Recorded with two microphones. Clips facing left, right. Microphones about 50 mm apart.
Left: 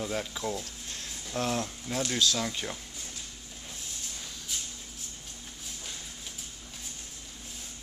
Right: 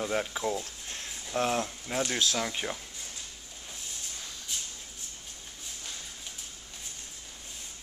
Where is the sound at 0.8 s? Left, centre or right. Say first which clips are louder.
Right 1 dB; right.